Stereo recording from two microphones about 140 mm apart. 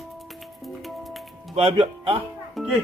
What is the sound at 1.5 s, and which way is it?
Speech, 40° right (ahead or behind).